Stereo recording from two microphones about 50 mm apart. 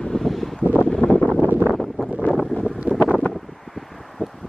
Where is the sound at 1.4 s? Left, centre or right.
Right.